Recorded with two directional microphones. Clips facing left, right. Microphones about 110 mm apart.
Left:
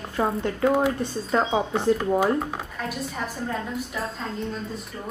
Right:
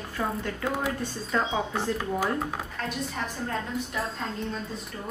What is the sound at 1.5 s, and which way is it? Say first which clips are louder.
Speech: left 6 dB; 25° left (ahead or behind).